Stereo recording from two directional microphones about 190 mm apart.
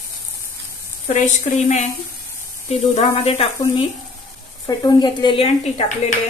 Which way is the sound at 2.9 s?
30° left (ahead or behind).